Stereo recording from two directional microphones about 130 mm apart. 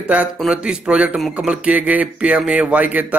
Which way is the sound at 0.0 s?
10° right (ahead or behind).